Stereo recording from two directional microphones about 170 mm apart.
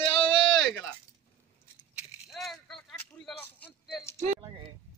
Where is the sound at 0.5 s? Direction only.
5° left (ahead or behind).